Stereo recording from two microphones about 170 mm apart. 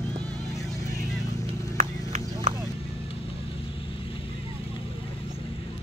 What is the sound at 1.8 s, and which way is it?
Clip-clop, 45° right (ahead or behind).